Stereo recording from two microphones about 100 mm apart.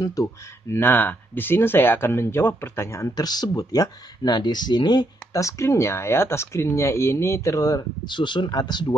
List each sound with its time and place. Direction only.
0.0 s speech: 35° left (ahead or behind)
3.2 s speech: 40° left (ahead or behind)
5.4 s speech: 30° left (ahead or behind); by 8.9 s 45° left (ahead or behind)